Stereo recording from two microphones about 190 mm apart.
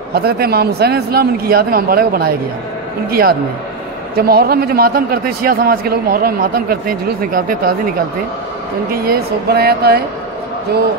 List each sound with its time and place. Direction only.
0.1 s a man's voice: 55° right (ahead or behind)
8.9 s speech: 50° right (ahead or behind)